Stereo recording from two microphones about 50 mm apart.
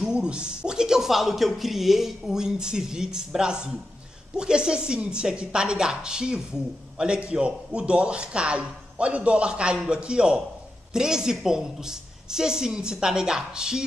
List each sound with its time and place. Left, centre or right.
0.0 s a man's voice: centre